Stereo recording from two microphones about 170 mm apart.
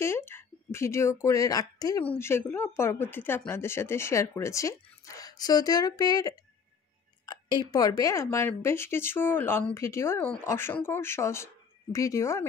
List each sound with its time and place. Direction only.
0.0 s speech: 15° left (ahead or behind)
7.7 s speech: 20° left (ahead or behind)